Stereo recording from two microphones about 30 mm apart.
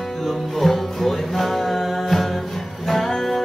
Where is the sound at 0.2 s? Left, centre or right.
Centre.